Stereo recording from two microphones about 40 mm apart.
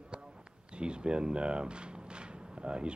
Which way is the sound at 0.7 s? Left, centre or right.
Right.